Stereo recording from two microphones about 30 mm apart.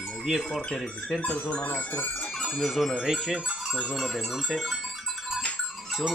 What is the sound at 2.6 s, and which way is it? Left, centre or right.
Speech, centre.